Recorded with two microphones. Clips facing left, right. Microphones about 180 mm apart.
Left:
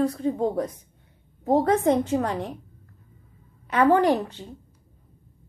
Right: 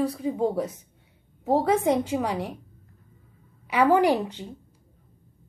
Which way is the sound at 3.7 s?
10° right (ahead or behind).